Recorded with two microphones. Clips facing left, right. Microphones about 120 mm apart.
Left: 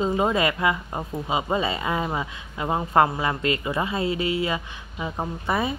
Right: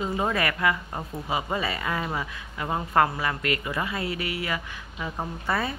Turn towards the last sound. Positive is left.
turn(degrees=15)  # may be behind; listen again after turning